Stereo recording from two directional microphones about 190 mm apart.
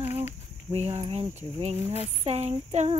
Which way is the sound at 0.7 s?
30° right (ahead or behind).